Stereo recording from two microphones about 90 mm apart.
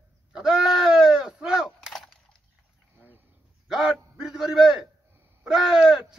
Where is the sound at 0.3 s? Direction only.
10° right (ahead or behind).